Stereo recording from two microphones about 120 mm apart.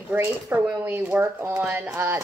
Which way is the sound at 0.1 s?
15° right (ahead or behind).